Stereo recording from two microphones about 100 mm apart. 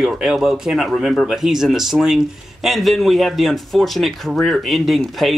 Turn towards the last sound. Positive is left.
turn(degrees=0)  # may be behind; listen again after turning